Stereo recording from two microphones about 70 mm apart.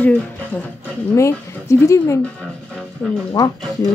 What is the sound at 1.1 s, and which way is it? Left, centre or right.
Speech, left.